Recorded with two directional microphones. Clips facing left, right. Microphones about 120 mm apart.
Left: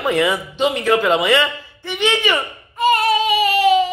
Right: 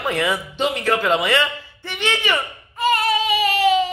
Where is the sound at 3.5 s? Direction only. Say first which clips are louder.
Left 3 dB; 10° left (ahead or behind).